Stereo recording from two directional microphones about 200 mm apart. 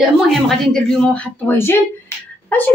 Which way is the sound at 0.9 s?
5° left (ahead or behind).